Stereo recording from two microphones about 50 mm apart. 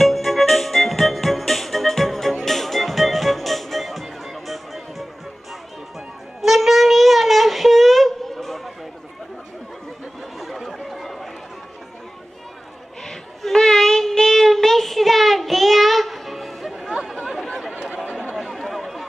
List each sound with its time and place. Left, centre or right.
0.0 s music: centre
6.4 s a sound: centre
10.4 s chatter: centre
13.0 s child singing: centre
17.5 s chatter: centre